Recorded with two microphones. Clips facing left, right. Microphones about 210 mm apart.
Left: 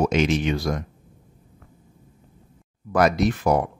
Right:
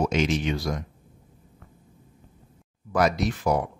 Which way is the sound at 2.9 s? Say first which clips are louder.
Left 4 dB; 55° left (ahead or behind).